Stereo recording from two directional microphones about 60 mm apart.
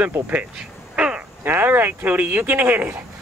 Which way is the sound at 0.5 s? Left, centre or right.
Centre.